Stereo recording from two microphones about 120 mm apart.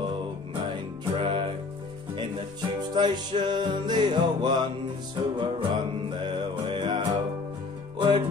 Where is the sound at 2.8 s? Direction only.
40° right (ahead or behind).